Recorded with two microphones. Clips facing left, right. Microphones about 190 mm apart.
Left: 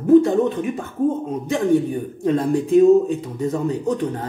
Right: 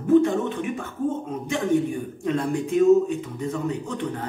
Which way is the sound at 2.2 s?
35° left (ahead or behind).